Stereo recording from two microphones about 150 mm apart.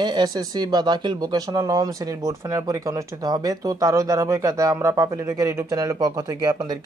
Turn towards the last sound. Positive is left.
turn(degrees=-25)  # may be behind; listen again after turning